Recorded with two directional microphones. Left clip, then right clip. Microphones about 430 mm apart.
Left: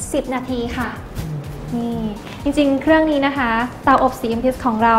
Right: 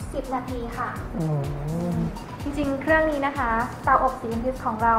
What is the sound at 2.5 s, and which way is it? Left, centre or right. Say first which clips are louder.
Speech: left 7 dB; left.